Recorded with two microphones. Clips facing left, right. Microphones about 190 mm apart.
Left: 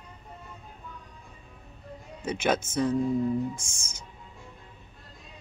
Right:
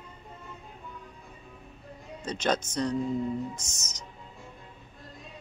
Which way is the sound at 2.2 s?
10° left (ahead or behind).